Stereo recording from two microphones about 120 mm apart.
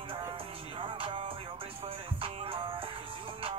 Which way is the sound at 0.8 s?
50° right (ahead or behind).